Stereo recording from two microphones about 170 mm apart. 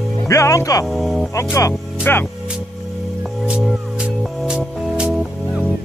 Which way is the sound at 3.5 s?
5° right (ahead or behind).